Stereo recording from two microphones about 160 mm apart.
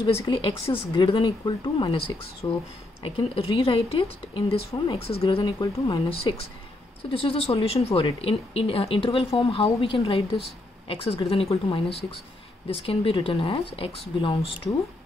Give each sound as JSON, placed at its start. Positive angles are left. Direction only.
{"t": 0.3, "sound": "a woman's voice", "side_deg": 35}
{"t": 3.0, "sound": "a woman's voice", "side_deg": 35}